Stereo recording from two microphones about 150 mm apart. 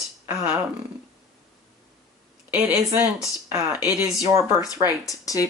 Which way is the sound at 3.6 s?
10° right (ahead or behind).